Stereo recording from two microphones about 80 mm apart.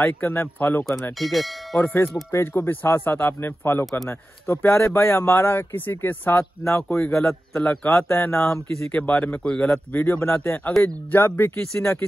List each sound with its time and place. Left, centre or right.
0.0 s speech: left
1.2 s speech: centre
1.8 s speech: left
7.1 s a man's voice: centre
8.1 s speech: left